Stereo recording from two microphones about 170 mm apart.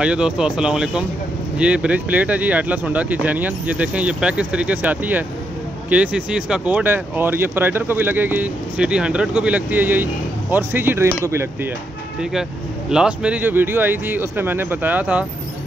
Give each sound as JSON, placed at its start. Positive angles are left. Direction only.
{"t": 0.0, "sound": "speech", "side_deg": -5}
{"t": 12.2, "sound": "speech", "side_deg": -5}